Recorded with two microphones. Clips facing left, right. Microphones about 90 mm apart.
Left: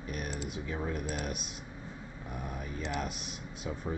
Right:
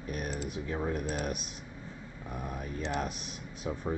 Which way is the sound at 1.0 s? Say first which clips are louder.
Right 3 dB; 40° right (ahead or behind).